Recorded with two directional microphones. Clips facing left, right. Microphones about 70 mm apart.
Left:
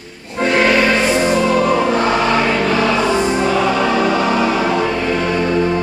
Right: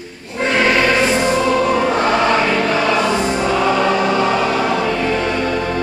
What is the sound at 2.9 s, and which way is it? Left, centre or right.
Music, centre.